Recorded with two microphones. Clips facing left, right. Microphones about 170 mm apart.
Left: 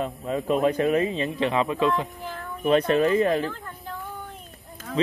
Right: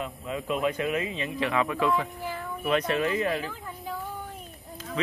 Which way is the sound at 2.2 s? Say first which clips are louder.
Right 1 dB; 10° right (ahead or behind).